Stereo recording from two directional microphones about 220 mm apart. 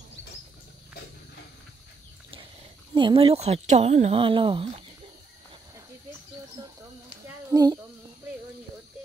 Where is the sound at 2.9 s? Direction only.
20° right (ahead or behind).